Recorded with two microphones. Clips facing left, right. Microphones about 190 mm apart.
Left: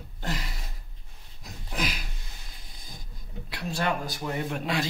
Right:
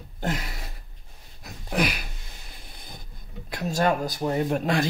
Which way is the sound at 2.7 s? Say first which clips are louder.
Right 3 dB; 65° right (ahead or behind).